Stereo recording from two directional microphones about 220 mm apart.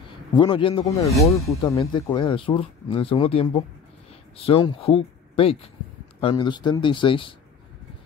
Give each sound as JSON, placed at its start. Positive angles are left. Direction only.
{"t": 0.4, "sound": "speech", "side_deg": 20}